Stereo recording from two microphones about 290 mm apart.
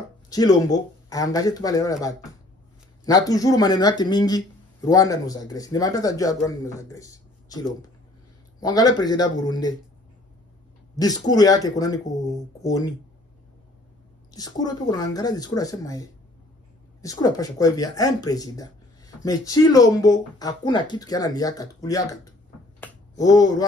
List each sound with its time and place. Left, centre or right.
0.3 s speech: centre
11.0 s speech: centre
14.3 s speech: centre
22.8 s a sound: centre